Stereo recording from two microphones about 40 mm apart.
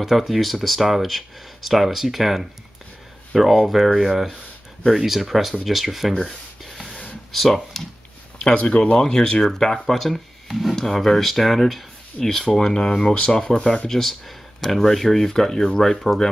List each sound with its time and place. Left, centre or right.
0.0 s speech: centre
7.3 s speech: centre
8.5 s speech: left
13.8 s speech: centre